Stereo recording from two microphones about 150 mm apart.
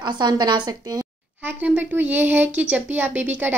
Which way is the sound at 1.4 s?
10° right (ahead or behind).